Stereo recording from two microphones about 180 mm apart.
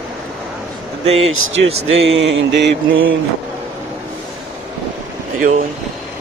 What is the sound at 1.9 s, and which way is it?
Mantra, 90° right.